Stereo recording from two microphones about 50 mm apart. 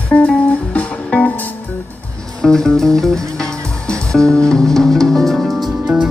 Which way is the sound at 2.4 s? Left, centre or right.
Centre.